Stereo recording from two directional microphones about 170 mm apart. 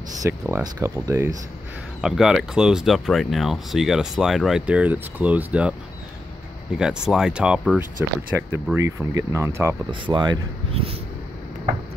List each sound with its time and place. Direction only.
0.2 s speech: 20° right (ahead or behind)
2.0 s speech: 5° right (ahead or behind)
6.8 s speech: 5° right (ahead or behind)
9.8 s speech: 25° right (ahead or behind)
10.7 s a sound: 35° right (ahead or behind)